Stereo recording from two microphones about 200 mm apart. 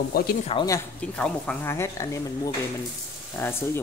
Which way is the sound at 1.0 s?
5° left (ahead or behind).